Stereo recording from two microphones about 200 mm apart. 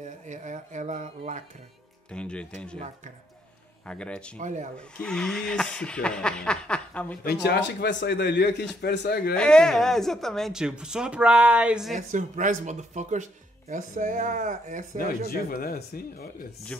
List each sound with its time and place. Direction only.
0.0 s speech: 40° right (ahead or behind)
2.1 s speech: 5° left (ahead or behind)
3.8 s speech: 5° left (ahead or behind)
4.4 s speech: 40° right (ahead or behind)
4.7 s speech: 5° left (ahead or behind)
7.2 s a man's voice: 55° left (ahead or behind)
9.3 s speech: 5° left (ahead or behind)
11.9 s speech: 40° right (ahead or behind)
15.0 s speech: 45° left (ahead or behind)